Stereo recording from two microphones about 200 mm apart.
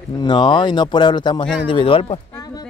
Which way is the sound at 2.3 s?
20° left (ahead or behind).